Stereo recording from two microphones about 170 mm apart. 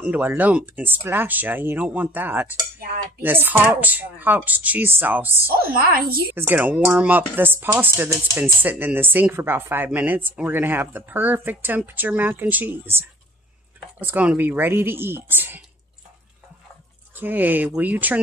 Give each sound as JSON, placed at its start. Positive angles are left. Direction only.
{"t": 0.0, "sound": "speech", "side_deg": -10}
{"t": 5.6, "sound": "a woman's voice", "side_deg": -60}
{"t": 6.3, "sound": "speech", "side_deg": -10}
{"t": 17.1, "sound": "speech", "side_deg": -10}